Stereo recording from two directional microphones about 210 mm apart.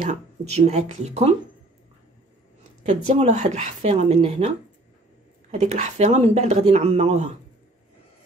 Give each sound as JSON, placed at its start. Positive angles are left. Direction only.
{"t": 0.1, "sound": "a woman's voice", "side_deg": -30}
{"t": 2.8, "sound": "a woman's voice", "side_deg": -35}
{"t": 5.5, "sound": "a woman's voice", "side_deg": -35}